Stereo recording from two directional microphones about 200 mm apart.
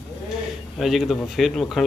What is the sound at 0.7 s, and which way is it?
A man's voice, centre (ahead or behind).